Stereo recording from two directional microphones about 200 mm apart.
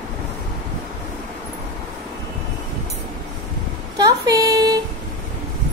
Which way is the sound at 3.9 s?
20° right (ahead or behind).